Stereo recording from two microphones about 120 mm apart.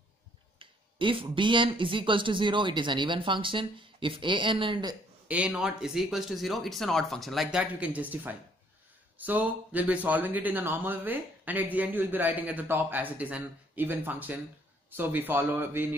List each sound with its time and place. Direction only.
0.6 s speech: 45° right (ahead or behind)
5.3 s speech: 5° right (ahead or behind)
7.6 s speech: 10° right (ahead or behind)